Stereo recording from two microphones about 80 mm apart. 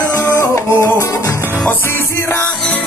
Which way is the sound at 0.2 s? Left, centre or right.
Left.